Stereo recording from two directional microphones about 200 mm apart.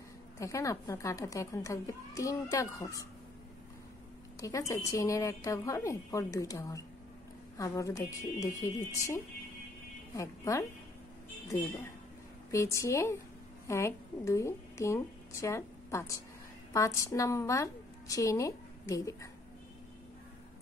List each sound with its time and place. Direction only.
0.4 s a woman's voice: 15° left (ahead or behind)
4.4 s a woman's voice: 15° left (ahead or behind)
10.1 s a woman's voice: 15° left (ahead or behind)
12.4 s a woman's voice: 15° left (ahead or behind)